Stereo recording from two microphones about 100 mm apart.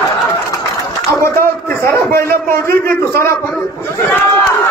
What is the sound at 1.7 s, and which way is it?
A man's voice, 30° left (ahead or behind).